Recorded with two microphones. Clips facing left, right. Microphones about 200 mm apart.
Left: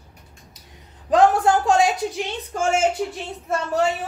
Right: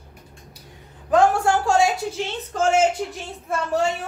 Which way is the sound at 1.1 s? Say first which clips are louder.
Left 1 dB; 20° left (ahead or behind).